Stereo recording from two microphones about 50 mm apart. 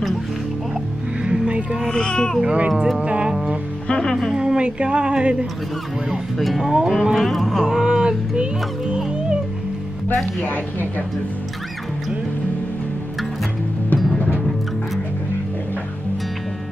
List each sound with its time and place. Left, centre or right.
1.2 s a sound: centre
1.9 s speech: centre
2.4 s speech: right
3.9 s music: centre
4.4 s speech: centre
6.3 s speech: centre
6.6 s speech: centre
7.2 s speech: centre
7.6 s speech: centre
10.0 s speech: left